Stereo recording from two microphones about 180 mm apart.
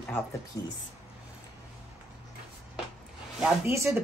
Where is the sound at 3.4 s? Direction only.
15° right (ahead or behind).